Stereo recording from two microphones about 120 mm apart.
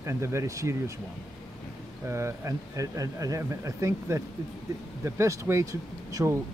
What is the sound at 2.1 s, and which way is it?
Speech, 25° right (ahead or behind).